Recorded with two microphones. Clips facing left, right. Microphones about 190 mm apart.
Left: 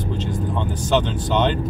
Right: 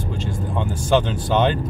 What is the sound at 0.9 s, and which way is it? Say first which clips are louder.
Speech: right 2 dB; 10° right (ahead or behind).